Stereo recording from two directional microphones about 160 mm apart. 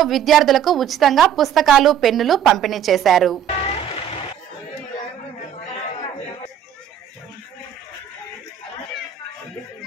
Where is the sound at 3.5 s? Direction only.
40° left (ahead or behind).